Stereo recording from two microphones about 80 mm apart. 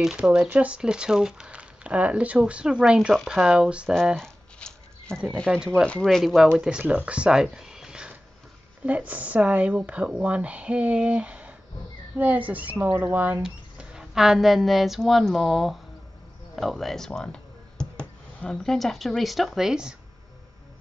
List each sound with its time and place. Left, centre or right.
0.0 s speech: centre
4.2 s a sound: centre
5.5 s speech: centre
6.0 s speech: centre
6.8 s speech: centre
13.4 s speech: centre